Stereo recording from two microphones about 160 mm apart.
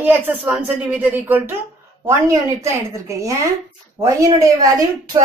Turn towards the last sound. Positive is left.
turn(degrees=-20)  # may be behind; listen again after turning